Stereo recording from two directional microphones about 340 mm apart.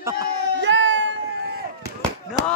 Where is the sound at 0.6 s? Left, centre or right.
Right.